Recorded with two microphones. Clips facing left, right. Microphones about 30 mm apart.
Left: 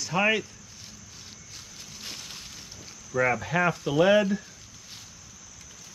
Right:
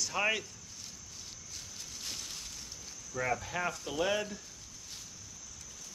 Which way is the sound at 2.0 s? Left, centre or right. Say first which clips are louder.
Left 3 dB; centre.